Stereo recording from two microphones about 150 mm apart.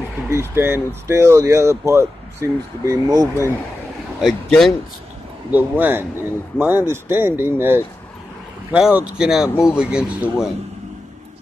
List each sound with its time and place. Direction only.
0.3 s speech: 15° right (ahead or behind)
4.2 s speech: centre (ahead or behind)
5.5 s speech: 10° right (ahead or behind)